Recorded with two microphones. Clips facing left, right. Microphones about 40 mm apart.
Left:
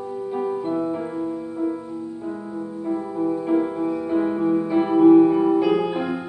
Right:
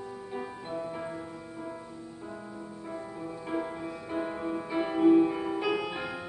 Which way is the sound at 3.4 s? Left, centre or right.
Centre.